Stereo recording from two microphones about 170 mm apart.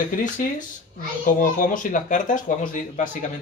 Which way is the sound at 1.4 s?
50° left (ahead or behind).